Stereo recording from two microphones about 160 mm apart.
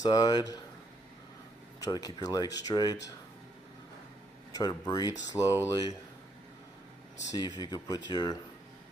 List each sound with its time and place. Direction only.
0.0 s speech: 25° left (ahead or behind)
1.8 s speech: 25° left (ahead or behind)
4.5 s speech: 25° left (ahead or behind)
5.4 s speech: 5° right (ahead or behind)
5.7 s speech: 25° left (ahead or behind)
7.3 s speech: 25° left (ahead or behind)